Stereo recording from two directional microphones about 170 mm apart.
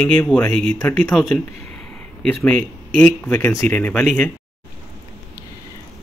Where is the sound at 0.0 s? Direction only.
10° left (ahead or behind).